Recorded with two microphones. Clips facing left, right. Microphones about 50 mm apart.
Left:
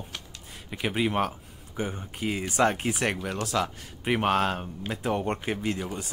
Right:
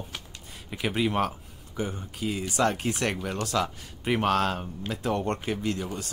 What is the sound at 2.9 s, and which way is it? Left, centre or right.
Speech, centre.